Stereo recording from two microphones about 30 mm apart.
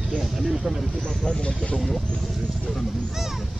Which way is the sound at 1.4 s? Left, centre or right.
Left.